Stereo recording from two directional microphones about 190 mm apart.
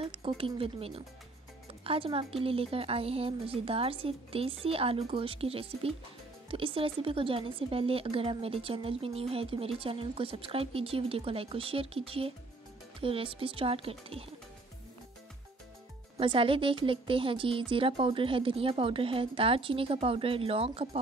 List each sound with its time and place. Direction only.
0.0 s a woman's voice: 30° right (ahead or behind)
16.2 s a woman's voice: 30° right (ahead or behind)